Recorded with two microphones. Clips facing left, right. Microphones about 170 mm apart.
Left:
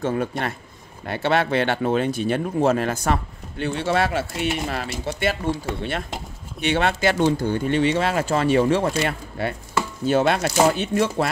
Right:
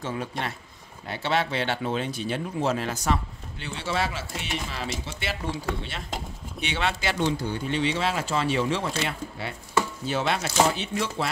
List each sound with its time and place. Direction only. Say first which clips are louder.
0.0 s speech: left 7 dB; 50° left (ahead or behind)